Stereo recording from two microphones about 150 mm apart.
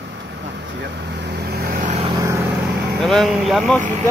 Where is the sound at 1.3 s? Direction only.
90° right.